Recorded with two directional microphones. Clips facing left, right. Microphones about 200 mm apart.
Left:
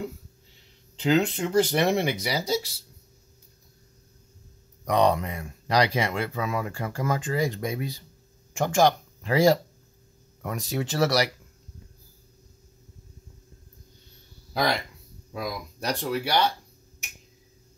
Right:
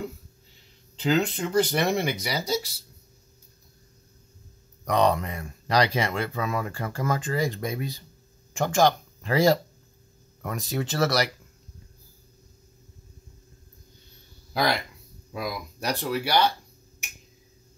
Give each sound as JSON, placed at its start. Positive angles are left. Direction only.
{"t": 1.0, "sound": "speech", "side_deg": 20}
{"t": 4.8, "sound": "speech", "side_deg": 15}
{"t": 14.5, "sound": "speech", "side_deg": 0}